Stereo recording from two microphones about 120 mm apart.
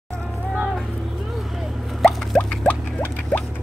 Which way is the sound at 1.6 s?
Centre (ahead or behind).